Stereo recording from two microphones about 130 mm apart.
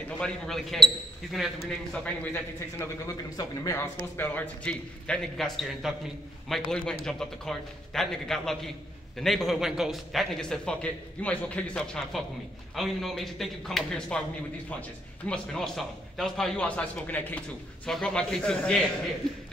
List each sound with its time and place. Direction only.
0.2 s a man's voice: centre (ahead or behind)
2.0 s a man's voice: 15° left (ahead or behind)
3.1 s a man's voice: 25° left (ahead or behind); by 14.2 s 5° left (ahead or behind)
15.2 s a man's voice: 5° left (ahead or behind)